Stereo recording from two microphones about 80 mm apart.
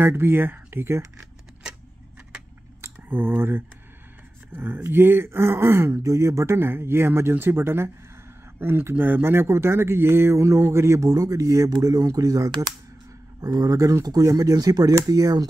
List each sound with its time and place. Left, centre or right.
0.0 s speech: right
2.8 s speech: right
4.8 s speech: right